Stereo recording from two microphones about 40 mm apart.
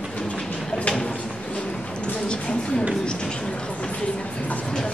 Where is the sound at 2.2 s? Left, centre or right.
Left.